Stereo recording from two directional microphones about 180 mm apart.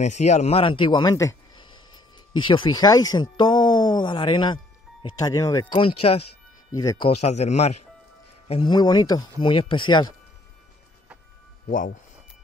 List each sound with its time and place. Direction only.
0.0 s a man's voice: 40° left (ahead or behind)
6.7 s speech: 20° left (ahead or behind)
7.2 s speech: 35° left (ahead or behind)
8.5 s speech: 25° left (ahead or behind)